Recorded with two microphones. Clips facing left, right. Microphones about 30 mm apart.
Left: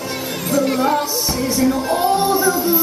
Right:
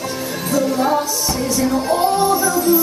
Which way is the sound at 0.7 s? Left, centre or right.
Left.